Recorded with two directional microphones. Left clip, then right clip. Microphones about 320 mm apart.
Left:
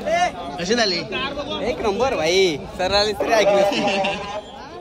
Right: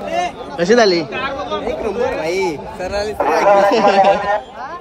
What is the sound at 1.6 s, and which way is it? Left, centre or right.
Speech, left.